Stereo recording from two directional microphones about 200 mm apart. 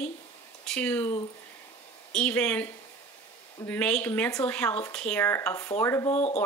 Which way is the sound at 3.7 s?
5° left (ahead or behind).